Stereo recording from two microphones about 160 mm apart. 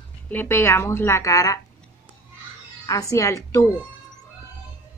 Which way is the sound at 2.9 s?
20° left (ahead or behind).